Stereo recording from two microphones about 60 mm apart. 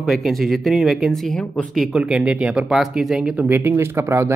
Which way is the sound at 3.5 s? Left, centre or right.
Right.